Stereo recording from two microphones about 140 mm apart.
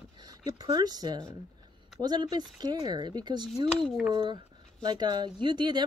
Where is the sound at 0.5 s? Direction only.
30° right (ahead or behind).